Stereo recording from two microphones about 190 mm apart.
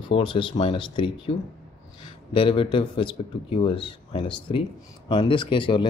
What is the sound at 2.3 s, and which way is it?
Speech, 30° left (ahead or behind).